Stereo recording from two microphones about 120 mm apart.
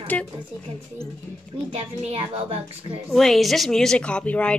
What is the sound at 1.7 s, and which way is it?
Speech, 50° right (ahead or behind).